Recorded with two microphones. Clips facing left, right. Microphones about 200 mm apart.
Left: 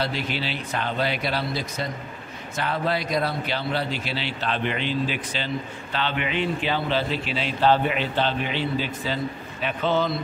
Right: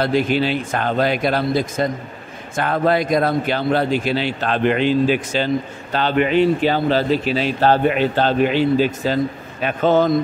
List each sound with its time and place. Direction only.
0.0 s a man's voice: 50° right (ahead or behind)